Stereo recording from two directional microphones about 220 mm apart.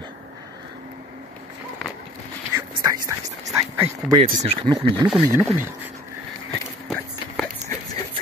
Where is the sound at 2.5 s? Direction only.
15° right (ahead or behind).